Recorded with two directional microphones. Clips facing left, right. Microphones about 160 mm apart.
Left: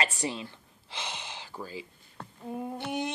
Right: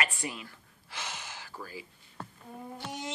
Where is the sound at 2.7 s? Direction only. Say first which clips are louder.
Left 5 dB; 60° left (ahead or behind).